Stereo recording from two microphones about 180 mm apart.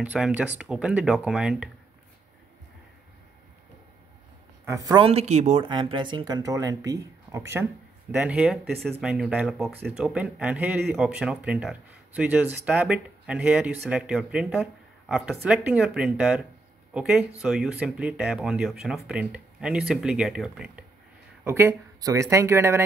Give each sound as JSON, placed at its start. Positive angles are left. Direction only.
{"t": 0.0, "sound": "speech", "side_deg": -10}
{"t": 4.6, "sound": "speech", "side_deg": -20}
{"t": 5.0, "sound": "speech", "side_deg": -35}
{"t": 5.7, "sound": "speech", "side_deg": -25}
{"t": 8.2, "sound": "speech", "side_deg": -5}